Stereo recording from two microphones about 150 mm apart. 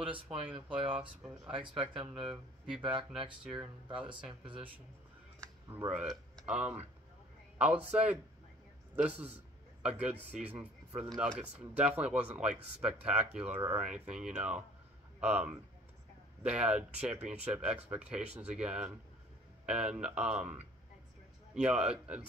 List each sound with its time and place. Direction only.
0.1 s speech: 35° right (ahead or behind)
2.1 s speech: 5° right (ahead or behind)
4.1 s speech: 35° right (ahead or behind)
5.9 s a man's voice: 5° right (ahead or behind)